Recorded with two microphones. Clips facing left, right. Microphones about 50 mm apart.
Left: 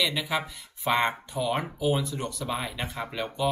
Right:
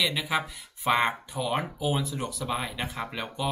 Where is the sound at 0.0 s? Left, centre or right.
Centre.